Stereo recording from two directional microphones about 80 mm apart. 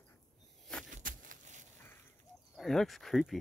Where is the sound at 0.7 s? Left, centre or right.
Centre.